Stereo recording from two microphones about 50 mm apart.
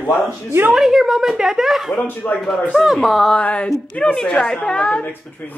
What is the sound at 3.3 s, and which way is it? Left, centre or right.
Speech, left.